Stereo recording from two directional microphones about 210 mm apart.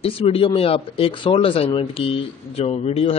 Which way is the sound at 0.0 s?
25° left (ahead or behind).